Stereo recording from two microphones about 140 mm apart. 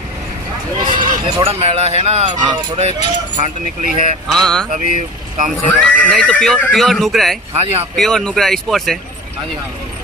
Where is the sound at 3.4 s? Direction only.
55° right (ahead or behind).